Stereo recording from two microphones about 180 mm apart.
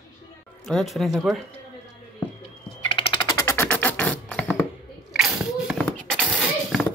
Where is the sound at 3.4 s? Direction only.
15° left (ahead or behind).